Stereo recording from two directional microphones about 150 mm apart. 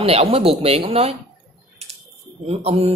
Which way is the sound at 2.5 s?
45° right (ahead or behind).